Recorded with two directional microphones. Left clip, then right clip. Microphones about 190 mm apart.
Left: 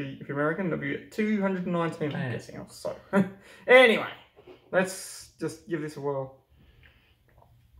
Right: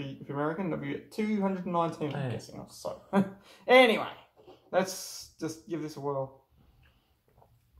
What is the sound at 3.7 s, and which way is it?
Speech, 10° left (ahead or behind).